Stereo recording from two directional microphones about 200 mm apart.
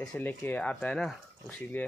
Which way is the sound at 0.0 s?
5° left (ahead or behind).